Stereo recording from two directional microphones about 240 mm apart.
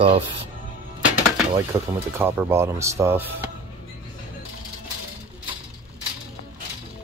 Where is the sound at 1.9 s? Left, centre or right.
Centre.